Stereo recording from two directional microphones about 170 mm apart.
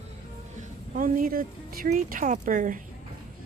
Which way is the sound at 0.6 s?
55° right (ahead or behind).